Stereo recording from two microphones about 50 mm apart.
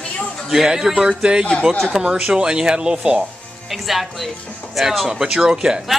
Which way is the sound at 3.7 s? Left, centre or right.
Centre.